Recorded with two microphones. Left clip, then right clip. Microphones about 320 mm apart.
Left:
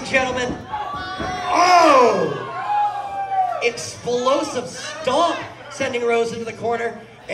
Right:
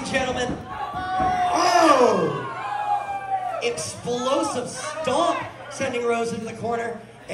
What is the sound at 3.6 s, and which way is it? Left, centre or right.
A man's voice, left.